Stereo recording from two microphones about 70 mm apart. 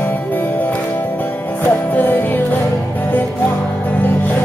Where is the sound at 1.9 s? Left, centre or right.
Left.